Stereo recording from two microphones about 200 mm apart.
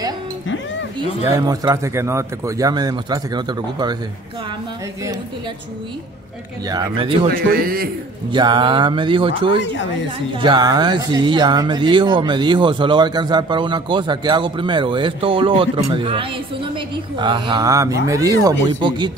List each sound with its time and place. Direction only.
1.3 s speech: 15° right (ahead or behind)
6.7 s speech: 20° right (ahead or behind)
7.3 s a man's voice: 50° right (ahead or behind)
8.3 s speech: 25° right (ahead or behind)